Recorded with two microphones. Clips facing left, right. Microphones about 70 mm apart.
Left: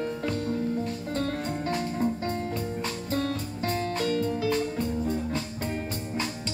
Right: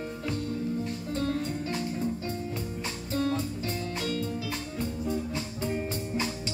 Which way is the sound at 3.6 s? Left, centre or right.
Left.